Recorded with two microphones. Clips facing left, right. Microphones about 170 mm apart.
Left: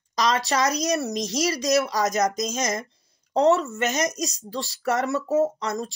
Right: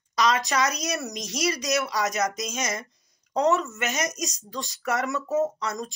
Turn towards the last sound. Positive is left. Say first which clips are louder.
# left 3 dB
turn(degrees=35)  # may be behind; listen again after turning